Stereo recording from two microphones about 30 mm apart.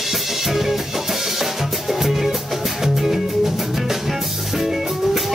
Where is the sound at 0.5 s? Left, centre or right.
Centre.